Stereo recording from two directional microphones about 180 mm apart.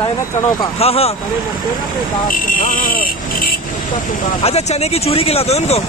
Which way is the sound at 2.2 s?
50° left (ahead or behind).